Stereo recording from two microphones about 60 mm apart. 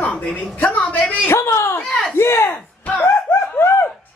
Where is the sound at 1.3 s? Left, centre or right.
Left.